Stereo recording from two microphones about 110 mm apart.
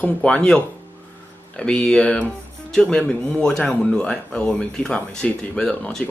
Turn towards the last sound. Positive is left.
turn(degrees=5)  # may be behind; listen again after turning